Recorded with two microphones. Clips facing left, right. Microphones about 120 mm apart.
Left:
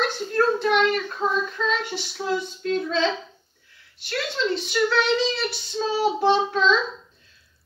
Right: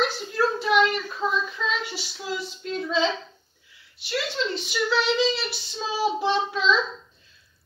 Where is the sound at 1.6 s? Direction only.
5° right (ahead or behind).